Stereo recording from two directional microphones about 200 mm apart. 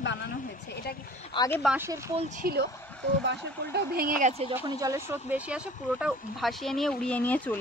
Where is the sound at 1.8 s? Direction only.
15° right (ahead or behind).